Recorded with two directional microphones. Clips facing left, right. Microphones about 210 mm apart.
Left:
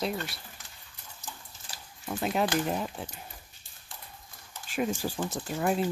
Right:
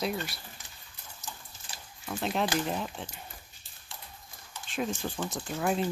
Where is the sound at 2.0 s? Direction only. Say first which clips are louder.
Left 2 dB; 5° left (ahead or behind).